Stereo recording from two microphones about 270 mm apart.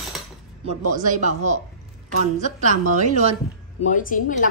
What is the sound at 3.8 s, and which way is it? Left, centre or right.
Speech, left.